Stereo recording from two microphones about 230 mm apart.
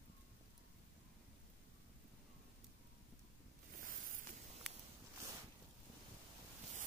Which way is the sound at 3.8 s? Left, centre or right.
Right.